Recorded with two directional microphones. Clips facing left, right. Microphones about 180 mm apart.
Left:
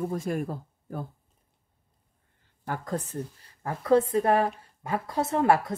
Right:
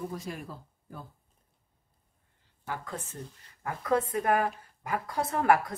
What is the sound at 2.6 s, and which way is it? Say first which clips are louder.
Speech: left 6 dB; 45° left (ahead or behind).